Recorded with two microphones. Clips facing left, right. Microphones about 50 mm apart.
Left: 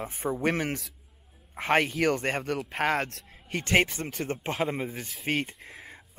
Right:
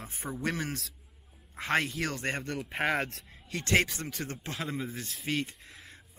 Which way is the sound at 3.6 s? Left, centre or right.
Centre.